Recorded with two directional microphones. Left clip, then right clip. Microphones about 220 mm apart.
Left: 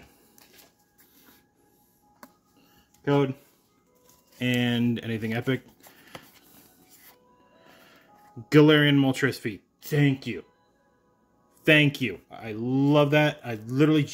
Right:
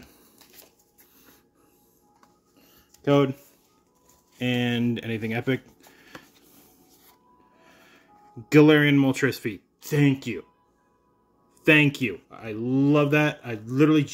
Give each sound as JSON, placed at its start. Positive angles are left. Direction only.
{"t": 3.0, "sound": "a sound", "side_deg": -20}
{"t": 4.4, "sound": "speech", "side_deg": 5}
{"t": 7.7, "sound": "speech", "side_deg": 0}
{"t": 11.6, "sound": "speech", "side_deg": 0}